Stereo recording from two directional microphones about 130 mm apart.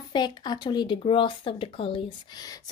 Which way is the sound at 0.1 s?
35° left (ahead or behind).